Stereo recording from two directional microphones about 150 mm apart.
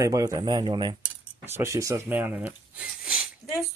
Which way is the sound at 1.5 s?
20° right (ahead or behind).